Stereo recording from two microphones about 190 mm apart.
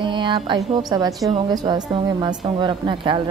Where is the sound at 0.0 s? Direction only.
25° right (ahead or behind).